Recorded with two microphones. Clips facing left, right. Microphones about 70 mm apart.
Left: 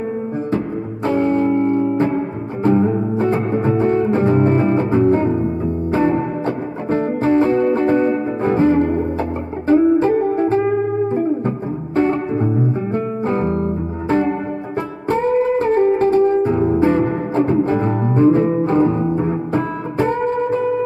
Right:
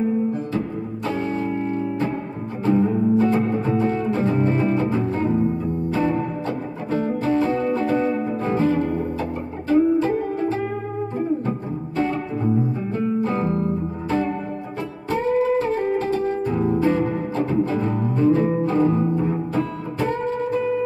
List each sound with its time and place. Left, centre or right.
1.0 s music: left
9.7 s music: left
9.9 s music: left
12.0 s music: left
15.0 s music: left